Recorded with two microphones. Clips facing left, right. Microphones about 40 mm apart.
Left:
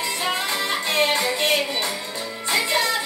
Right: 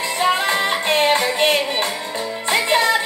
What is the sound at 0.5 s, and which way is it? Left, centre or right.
Music, right.